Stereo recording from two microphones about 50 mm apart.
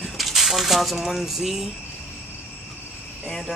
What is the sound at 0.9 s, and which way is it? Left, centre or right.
Speech, centre.